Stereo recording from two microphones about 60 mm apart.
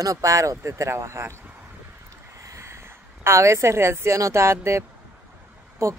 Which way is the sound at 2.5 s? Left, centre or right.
Right.